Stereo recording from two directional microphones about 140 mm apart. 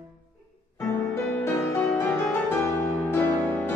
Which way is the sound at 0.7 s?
15° left (ahead or behind).